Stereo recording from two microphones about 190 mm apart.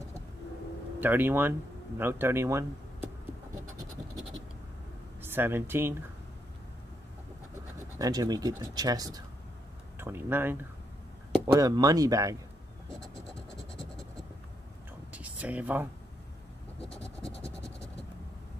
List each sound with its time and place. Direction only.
1.0 s speech: 10° right (ahead or behind)
5.2 s speech: 10° right (ahead or behind)
8.0 s speech: 20° right (ahead or behind)
11.3 s speech: 20° right (ahead or behind)
15.1 s a sound: 5° right (ahead or behind)